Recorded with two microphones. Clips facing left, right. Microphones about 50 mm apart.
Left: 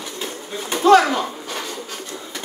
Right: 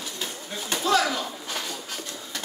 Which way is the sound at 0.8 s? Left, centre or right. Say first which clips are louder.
Left 10 dB; left.